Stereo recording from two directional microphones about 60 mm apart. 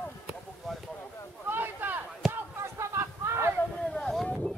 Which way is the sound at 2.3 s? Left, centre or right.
Right.